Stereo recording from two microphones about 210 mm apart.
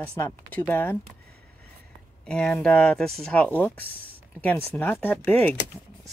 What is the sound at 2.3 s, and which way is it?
Speech, 5° left (ahead or behind).